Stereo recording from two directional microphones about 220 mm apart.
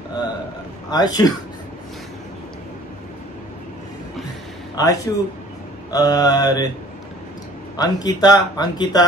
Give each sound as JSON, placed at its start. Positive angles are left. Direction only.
{"t": 0.8, "sound": "speech", "side_deg": 20}
{"t": 4.7, "sound": "speech", "side_deg": 15}
{"t": 7.7, "sound": "speech", "side_deg": 15}